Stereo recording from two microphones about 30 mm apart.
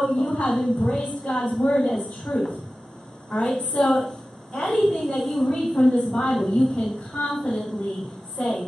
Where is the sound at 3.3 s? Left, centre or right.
Left.